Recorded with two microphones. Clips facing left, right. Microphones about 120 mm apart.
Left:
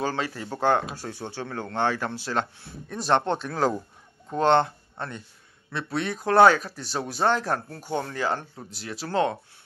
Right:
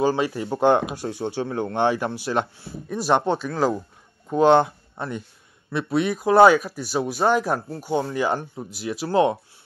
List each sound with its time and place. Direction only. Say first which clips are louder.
0.0 s speech: right 7 dB; 15° right (ahead or behind)